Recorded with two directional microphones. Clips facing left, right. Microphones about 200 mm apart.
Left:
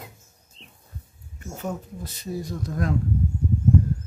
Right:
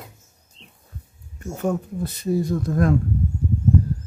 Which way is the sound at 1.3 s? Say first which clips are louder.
Right 7 dB; 50° right (ahead or behind).